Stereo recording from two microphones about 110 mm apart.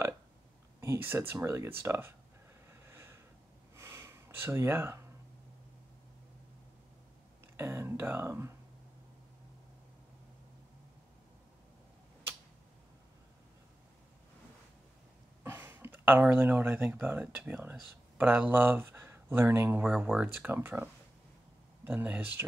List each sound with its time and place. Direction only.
0.7 s speech: 20° right (ahead or behind)
2.7 s a sound: 20° right (ahead or behind)
3.7 s gasp: 25° right (ahead or behind)
7.5 s speech: 20° right (ahead or behind)
15.4 s speech: 20° right (ahead or behind)
19.8 s speech: 10° right (ahead or behind)